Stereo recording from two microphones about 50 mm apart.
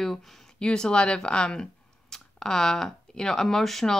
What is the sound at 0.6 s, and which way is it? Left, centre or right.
Speech, centre.